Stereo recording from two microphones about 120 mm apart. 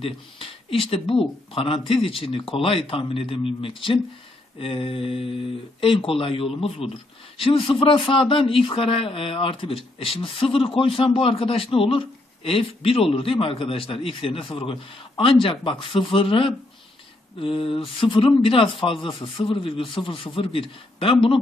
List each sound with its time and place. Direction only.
0.0 s speech: 50° left (ahead or behind)